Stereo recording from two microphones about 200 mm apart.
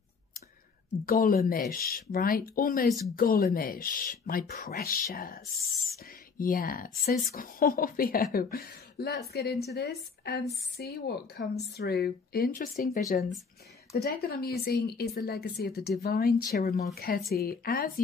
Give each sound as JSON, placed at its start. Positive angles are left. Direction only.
{"t": 1.0, "sound": "speech", "side_deg": 45}